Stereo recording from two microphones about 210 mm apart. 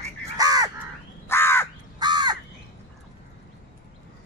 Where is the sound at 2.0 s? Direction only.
20° right (ahead or behind).